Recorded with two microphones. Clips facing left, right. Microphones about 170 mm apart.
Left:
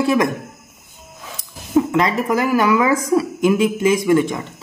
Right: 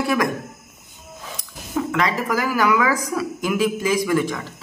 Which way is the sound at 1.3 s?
25° left (ahead or behind).